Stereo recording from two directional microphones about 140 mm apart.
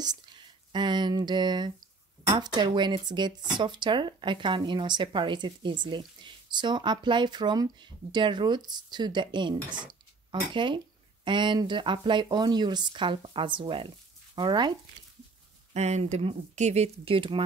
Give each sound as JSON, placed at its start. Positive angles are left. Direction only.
{"t": 0.0, "sound": "speech", "side_deg": -30}
{"t": 15.7, "sound": "speech", "side_deg": -50}